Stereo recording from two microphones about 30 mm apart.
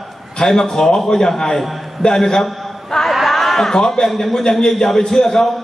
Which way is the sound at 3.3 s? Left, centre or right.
Centre.